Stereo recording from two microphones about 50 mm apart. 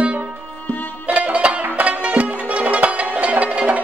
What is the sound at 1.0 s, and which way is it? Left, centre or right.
Music, right.